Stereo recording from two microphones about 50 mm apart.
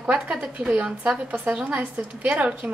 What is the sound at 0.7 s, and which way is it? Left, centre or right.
A woman's voice, right.